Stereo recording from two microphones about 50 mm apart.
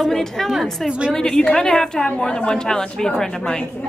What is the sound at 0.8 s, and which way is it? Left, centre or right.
Speech, right.